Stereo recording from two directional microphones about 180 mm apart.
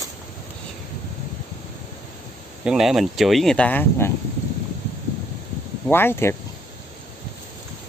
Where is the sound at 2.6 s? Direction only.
Centre (ahead or behind).